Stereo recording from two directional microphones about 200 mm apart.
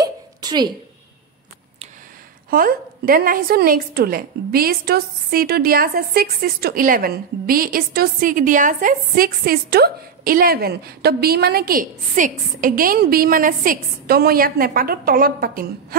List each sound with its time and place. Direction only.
0.0 s hiccup: 20° right (ahead or behind)
2.5 s a woman's voice: 45° right (ahead or behind)